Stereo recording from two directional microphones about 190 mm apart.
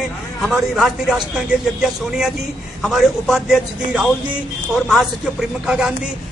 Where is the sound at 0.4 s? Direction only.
Centre (ahead or behind).